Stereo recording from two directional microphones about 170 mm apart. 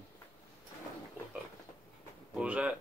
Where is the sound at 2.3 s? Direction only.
5° right (ahead or behind).